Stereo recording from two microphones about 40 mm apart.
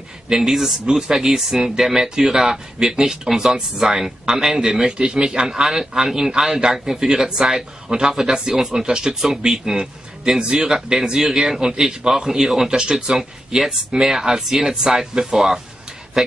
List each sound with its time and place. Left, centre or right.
0.3 s speech: centre